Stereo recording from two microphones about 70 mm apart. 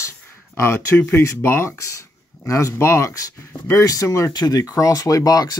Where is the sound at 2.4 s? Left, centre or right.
Left.